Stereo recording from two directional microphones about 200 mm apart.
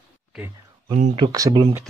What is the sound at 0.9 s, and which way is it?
Speech, 35° right (ahead or behind).